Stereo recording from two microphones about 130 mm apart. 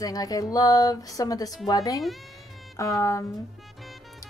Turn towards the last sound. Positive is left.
turn(degrees=25)  # may be behind; listen again after turning